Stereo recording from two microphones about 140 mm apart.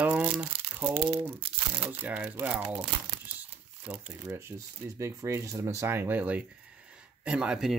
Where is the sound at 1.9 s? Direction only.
10° right (ahead or behind).